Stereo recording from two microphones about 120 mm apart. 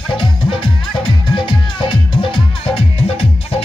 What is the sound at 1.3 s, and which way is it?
Music, 40° left (ahead or behind).